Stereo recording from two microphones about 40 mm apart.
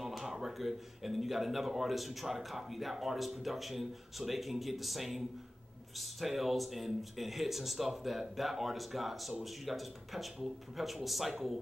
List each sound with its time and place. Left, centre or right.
0.0 s speech: centre